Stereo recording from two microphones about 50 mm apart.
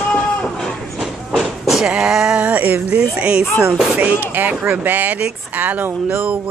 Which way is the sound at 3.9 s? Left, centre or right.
Right.